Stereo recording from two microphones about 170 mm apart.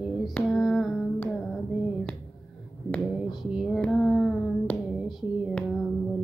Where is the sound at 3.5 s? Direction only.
Centre (ahead or behind).